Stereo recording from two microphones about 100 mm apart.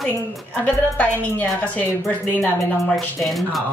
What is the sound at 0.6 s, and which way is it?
A woman's voice, 15° left (ahead or behind).